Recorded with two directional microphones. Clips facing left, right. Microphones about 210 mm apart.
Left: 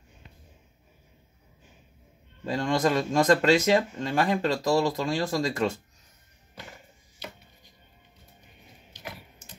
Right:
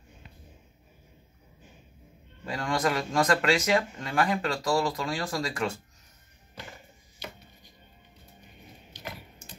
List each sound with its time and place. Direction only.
2.4 s speech: 25° left (ahead or behind)